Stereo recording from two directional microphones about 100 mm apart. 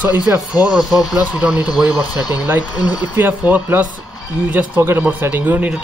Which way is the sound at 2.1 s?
45° left (ahead or behind).